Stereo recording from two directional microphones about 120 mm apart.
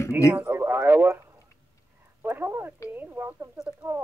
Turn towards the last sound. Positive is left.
turn(degrees=-10)  # may be behind; listen again after turning